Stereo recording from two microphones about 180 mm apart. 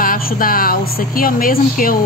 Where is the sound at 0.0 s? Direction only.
50° left (ahead or behind).